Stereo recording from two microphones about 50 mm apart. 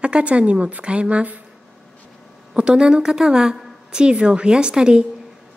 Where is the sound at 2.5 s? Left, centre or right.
Centre.